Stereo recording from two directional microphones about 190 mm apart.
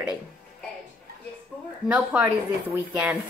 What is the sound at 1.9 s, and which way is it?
Speech, 5° right (ahead or behind).